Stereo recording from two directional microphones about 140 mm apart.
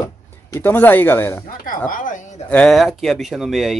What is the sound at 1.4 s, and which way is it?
Speech, 80° left.